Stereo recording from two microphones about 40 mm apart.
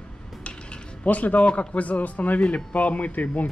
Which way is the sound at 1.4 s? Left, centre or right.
Left.